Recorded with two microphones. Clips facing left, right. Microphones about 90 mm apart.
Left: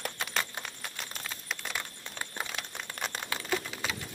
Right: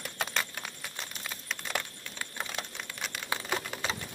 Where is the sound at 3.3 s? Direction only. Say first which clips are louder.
Right 2 dB; 25° right (ahead or behind).